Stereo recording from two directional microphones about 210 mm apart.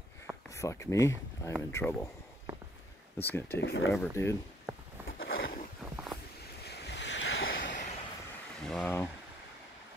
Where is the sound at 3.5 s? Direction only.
55° left (ahead or behind).